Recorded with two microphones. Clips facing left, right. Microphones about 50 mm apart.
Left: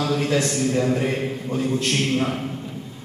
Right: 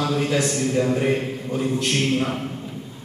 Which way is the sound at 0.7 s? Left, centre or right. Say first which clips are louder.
Right 1 dB; centre.